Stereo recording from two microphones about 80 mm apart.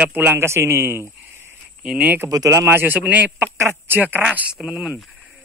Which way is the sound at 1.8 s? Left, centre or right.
Centre.